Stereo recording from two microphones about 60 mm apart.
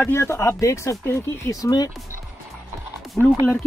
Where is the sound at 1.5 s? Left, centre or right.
Left.